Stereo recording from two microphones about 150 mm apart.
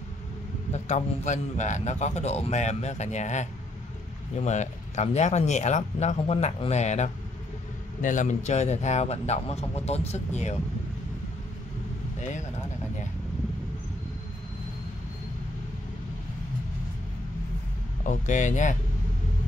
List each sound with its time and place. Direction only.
0.7 s a man's voice: 50° left (ahead or behind)
12.2 s a sound: 55° left (ahead or behind)
18.0 s speech: 55° left (ahead or behind)